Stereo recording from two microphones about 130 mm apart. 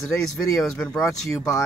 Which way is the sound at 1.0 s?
25° left (ahead or behind).